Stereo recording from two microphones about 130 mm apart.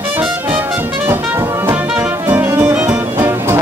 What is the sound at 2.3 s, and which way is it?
Music, 15° right (ahead or behind).